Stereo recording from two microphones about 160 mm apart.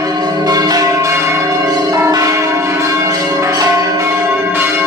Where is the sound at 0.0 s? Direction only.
25° right (ahead or behind).